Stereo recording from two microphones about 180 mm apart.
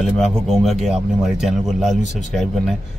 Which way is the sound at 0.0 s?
Centre (ahead or behind).